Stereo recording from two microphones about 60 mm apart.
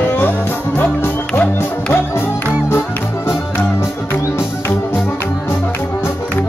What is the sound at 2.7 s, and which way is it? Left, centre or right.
Music, left.